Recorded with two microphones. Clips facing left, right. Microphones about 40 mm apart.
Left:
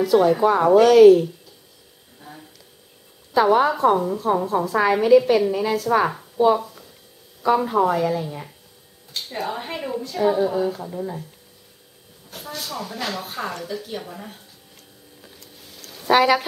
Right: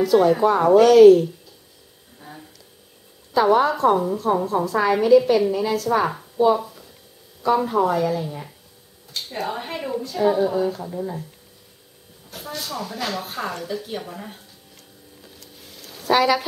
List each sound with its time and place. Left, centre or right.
0.0 s a woman's voice: centre
3.3 s a woman's voice: centre
12.3 s a woman's voice: centre
16.0 s speech: left